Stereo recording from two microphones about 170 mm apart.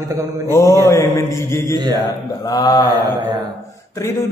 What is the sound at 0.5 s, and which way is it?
A man's voice, 15° left (ahead or behind).